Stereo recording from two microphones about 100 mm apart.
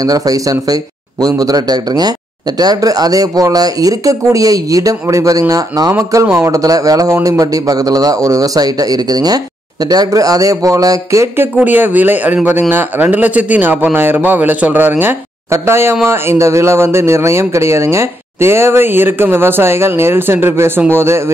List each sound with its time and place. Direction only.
0.0 s speech: 40° right (ahead or behind)
11.5 s speech: 20° right (ahead or behind)